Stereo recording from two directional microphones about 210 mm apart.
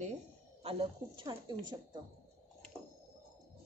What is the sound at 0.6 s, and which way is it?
A woman's voice, 25° right (ahead or behind).